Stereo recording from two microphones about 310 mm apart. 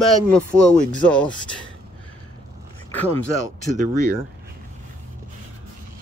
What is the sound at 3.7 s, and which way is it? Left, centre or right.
Speech, right.